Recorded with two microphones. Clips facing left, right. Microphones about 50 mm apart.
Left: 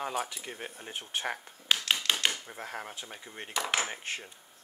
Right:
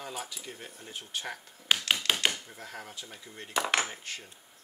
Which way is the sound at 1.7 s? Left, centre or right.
Centre.